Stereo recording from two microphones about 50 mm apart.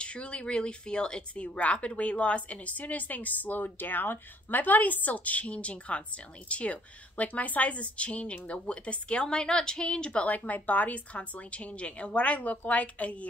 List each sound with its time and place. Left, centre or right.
0.0 s speech: left
10.2 s speech: left